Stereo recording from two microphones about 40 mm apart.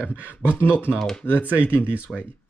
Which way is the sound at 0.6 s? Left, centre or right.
Left.